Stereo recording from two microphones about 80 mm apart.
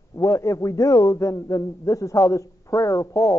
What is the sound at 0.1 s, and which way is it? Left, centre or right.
A man's voice, left.